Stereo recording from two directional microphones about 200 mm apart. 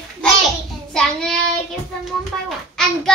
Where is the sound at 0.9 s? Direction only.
5° left (ahead or behind).